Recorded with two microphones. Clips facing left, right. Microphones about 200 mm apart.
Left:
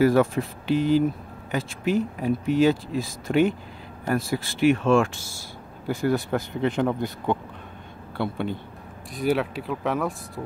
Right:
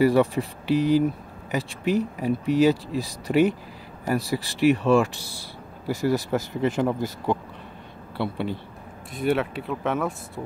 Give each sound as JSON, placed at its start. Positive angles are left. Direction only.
{"t": 0.0, "sound": "speech", "side_deg": 0}